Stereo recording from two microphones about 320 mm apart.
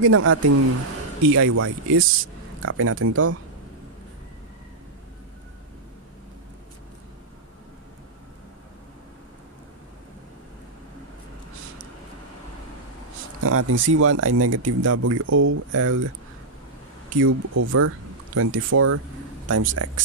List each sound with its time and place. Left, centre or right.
0.0 s speech: right
13.4 s speech: right
17.3 s speech: right